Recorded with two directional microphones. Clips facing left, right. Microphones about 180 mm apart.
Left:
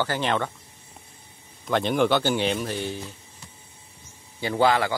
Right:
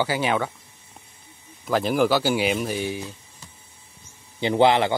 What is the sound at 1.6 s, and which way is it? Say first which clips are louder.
A man's voice: right 1 dB; 5° right (ahead or behind).